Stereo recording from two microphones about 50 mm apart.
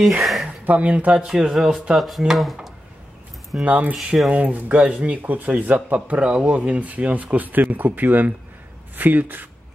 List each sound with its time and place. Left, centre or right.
0.2 s a sound: centre
0.7 s speech: right
2.0 s speech: centre
3.6 s speech: right
3.9 s speech: centre
4.3 s speech: right